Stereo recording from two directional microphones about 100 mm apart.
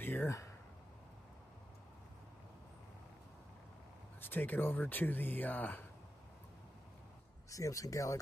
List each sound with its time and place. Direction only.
0.0 s a sound: 20° left (ahead or behind)
4.2 s speech: 20° left (ahead or behind)
7.5 s speech: 35° left (ahead or behind)